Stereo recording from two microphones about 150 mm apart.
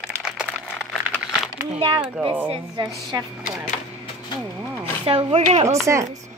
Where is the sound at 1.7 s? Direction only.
35° right (ahead or behind).